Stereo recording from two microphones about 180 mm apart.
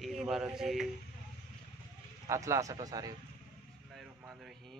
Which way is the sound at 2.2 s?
15° right (ahead or behind).